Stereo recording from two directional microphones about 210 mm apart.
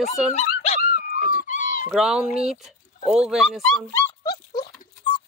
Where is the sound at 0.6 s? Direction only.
35° left (ahead or behind).